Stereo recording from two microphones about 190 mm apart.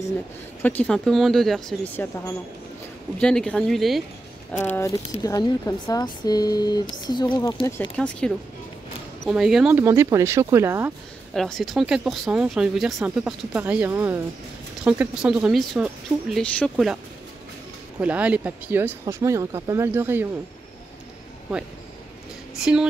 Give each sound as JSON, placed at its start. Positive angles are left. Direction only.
{"t": 0.6, "sound": "speech", "side_deg": 10}
{"t": 3.2, "sound": "speech", "side_deg": 5}
{"t": 4.5, "sound": "speech", "side_deg": 10}
{"t": 8.0, "sound": "speech", "side_deg": 5}
{"t": 11.3, "sound": "speech", "side_deg": 0}
{"t": 18.0, "sound": "speech", "side_deg": -5}